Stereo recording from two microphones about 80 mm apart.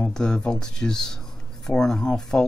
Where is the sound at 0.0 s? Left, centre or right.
Centre.